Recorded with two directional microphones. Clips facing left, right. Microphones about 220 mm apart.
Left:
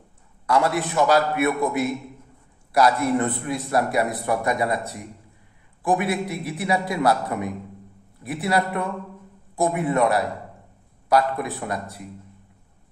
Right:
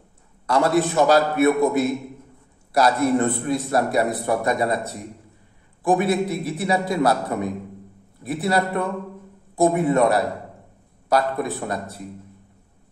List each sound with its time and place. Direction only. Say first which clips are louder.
0.6 s a man's voice: right 4 dB; 25° right (ahead or behind)